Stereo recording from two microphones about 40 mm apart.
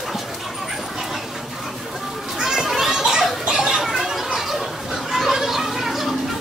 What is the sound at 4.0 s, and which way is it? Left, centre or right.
Children playing, centre.